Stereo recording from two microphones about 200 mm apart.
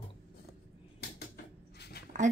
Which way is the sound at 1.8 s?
50° left (ahead or behind).